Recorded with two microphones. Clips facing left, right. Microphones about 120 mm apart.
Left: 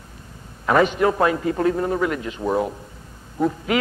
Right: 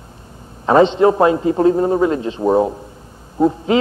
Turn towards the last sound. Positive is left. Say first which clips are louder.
# right 6 dB
turn(degrees=-25)  # may be behind; listen again after turning